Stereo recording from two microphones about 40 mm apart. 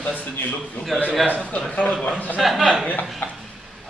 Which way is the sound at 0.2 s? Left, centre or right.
Left.